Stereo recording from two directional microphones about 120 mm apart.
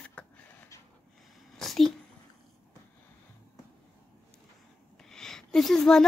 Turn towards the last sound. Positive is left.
turn(degrees=5)  # may be behind; listen again after turning